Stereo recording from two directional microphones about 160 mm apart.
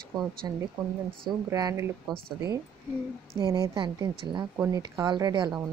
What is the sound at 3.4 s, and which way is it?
A woman's voice, 25° right (ahead or behind).